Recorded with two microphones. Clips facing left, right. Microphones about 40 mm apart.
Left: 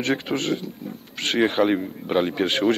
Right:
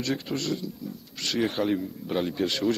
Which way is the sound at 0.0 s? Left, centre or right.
Left.